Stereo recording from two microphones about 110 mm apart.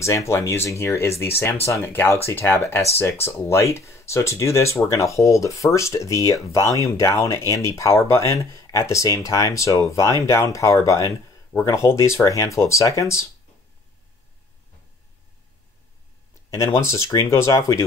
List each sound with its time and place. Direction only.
0.0 s speech: 25° left (ahead or behind)
16.4 s speech: 25° left (ahead or behind)